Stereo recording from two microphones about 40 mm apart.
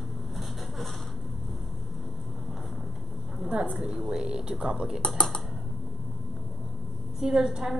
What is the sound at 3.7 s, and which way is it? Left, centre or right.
Speech, centre.